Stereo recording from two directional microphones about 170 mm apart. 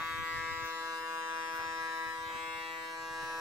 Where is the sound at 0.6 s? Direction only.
15° right (ahead or behind).